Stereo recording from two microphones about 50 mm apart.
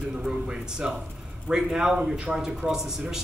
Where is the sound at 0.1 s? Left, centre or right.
Centre.